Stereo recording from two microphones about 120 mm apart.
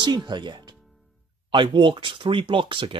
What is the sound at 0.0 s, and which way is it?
Speech, 35° right (ahead or behind).